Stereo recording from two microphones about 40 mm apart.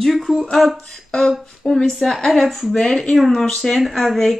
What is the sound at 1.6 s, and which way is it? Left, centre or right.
Speech, centre.